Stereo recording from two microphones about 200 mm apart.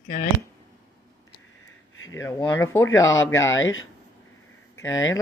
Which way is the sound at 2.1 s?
15° left (ahead or behind).